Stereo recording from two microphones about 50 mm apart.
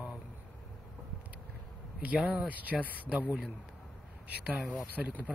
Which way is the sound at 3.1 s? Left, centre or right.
Right.